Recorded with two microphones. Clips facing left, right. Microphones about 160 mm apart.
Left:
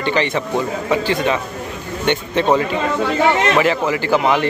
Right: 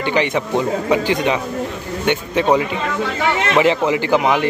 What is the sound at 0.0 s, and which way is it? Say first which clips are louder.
A man's voice: right 1 dB; 15° right (ahead or behind).